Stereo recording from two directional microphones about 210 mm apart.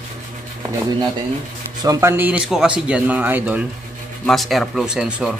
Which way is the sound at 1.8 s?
15° right (ahead or behind).